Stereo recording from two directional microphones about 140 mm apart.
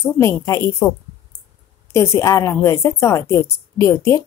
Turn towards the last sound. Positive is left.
turn(degrees=20)  # may be behind; listen again after turning